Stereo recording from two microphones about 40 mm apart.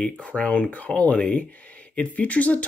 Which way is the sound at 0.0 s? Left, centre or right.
Left.